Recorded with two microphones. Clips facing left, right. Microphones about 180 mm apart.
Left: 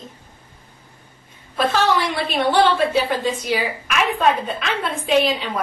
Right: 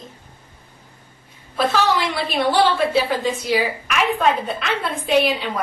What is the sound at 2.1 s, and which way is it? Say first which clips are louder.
A woman's voice: even; 10° right (ahead or behind).